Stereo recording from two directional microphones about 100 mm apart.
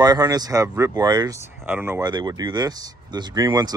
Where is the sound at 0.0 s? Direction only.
40° right (ahead or behind).